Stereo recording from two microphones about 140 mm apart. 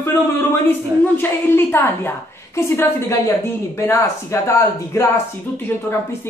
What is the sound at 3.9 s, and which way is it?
Speech, 20° left (ahead or behind).